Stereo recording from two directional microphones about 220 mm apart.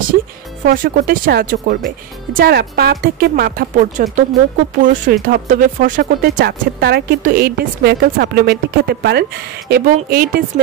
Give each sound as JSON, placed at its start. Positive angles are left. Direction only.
{"t": 0.7, "sound": "speech", "side_deg": -40}